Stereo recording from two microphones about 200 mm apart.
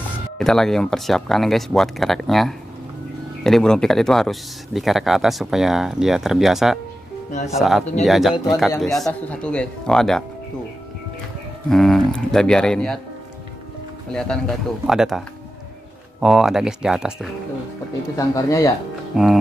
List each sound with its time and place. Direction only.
0.4 s speech: centre (ahead or behind)
11.7 s speech: centre (ahead or behind)
14.1 s speech: 5° left (ahead or behind)
18.1 s speech: 15° left (ahead or behind)
19.1 s speech: centre (ahead or behind)